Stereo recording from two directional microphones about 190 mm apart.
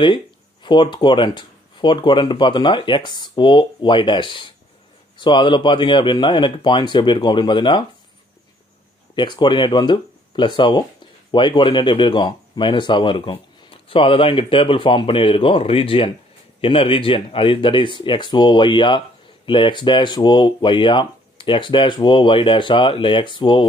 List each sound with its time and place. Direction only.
0.7 s speech: 25° left (ahead or behind)
9.1 s speech: 25° left (ahead or behind)